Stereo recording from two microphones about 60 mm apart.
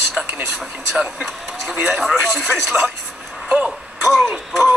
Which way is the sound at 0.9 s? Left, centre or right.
Centre.